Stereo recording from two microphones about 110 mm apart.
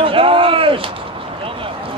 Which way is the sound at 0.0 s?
55° right (ahead or behind).